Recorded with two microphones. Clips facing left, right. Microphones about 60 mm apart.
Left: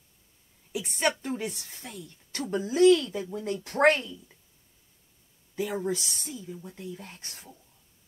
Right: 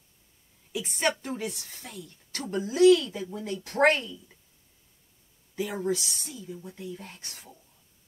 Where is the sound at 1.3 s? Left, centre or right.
Left.